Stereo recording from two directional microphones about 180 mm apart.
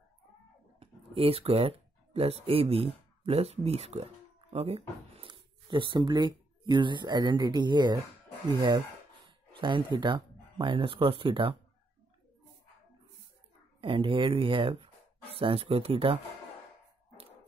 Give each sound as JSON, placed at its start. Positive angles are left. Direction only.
{"t": 0.7, "sound": "speech", "side_deg": -30}
{"t": 13.7, "sound": "speech", "side_deg": -30}